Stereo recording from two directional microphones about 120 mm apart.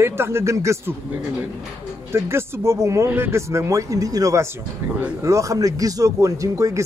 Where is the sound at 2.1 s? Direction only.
20° right (ahead or behind).